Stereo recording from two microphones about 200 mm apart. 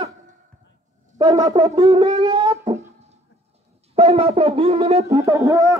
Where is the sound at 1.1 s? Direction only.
20° right (ahead or behind).